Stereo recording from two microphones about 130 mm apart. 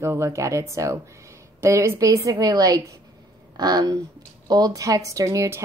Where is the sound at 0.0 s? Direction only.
20° right (ahead or behind).